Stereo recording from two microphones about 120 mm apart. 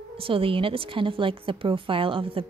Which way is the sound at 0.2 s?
50° right (ahead or behind).